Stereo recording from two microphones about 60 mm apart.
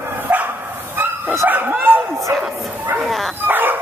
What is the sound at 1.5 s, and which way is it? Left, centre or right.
Speech, right.